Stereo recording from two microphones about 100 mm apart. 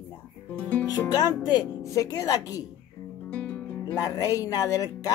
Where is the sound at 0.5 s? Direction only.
15° left (ahead or behind).